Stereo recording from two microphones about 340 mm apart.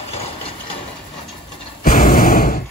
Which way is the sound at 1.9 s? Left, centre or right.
Left.